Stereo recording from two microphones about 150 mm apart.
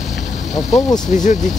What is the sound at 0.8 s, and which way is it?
Speech, 25° left (ahead or behind).